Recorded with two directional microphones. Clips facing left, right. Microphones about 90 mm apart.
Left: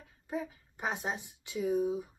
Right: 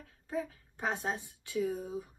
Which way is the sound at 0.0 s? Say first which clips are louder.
Right 1 dB; 15° left (ahead or behind).